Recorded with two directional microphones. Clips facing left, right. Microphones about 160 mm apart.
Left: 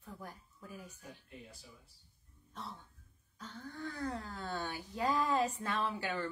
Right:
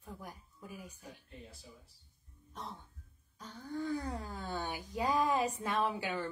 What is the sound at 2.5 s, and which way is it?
Throat clearing, 15° right (ahead or behind).